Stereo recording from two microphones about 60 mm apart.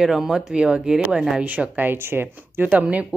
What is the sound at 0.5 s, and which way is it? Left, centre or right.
Speech, centre.